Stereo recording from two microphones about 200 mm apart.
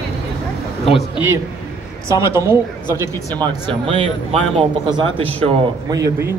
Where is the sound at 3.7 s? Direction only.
25° right (ahead or behind).